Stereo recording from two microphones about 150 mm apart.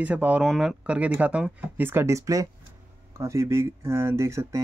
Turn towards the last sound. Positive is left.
turn(degrees=-20)  # may be behind; listen again after turning